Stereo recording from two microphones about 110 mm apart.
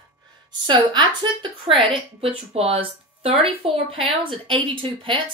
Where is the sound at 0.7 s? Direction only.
45° right (ahead or behind).